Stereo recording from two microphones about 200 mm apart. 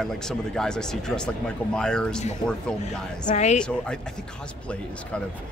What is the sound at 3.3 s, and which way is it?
Speech, 35° left (ahead or behind).